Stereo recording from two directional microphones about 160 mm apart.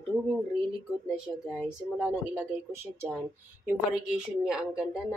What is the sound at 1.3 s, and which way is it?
Speech, 15° left (ahead or behind).